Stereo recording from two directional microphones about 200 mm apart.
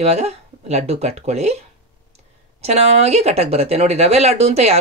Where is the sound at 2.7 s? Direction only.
30° right (ahead or behind).